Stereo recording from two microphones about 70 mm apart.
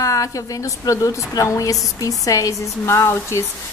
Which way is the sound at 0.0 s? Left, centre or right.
Left.